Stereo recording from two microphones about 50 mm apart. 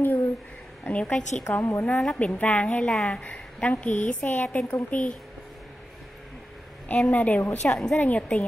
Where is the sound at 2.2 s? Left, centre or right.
Left.